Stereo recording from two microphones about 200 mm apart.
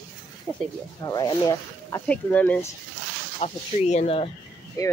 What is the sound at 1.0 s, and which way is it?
Speech, 20° left (ahead or behind).